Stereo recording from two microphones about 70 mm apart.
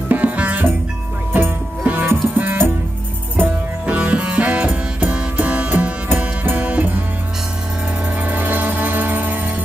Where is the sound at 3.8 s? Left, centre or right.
Centre.